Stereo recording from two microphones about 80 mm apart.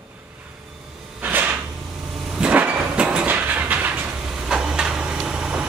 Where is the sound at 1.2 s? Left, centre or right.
Right.